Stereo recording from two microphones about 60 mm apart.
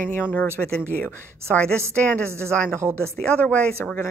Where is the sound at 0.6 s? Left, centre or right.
Centre.